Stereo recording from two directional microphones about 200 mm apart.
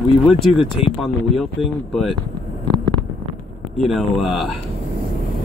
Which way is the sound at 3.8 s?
Centre (ahead or behind).